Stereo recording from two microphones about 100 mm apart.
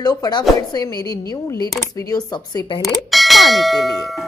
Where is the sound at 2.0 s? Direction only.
40° left (ahead or behind).